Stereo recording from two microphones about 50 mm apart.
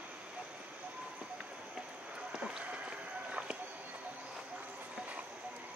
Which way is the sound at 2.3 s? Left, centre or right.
Right.